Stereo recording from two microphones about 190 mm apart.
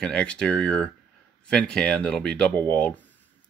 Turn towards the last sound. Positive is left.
turn(degrees=10)  # may be behind; listen again after turning